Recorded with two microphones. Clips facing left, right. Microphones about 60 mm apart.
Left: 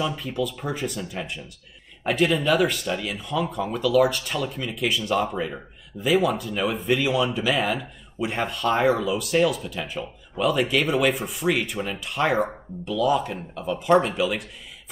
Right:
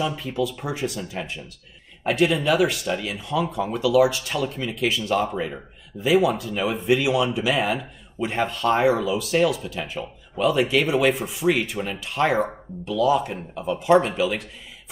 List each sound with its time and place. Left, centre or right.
0.0 s speech: centre